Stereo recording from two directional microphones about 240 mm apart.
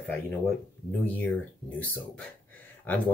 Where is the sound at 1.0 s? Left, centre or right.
Centre.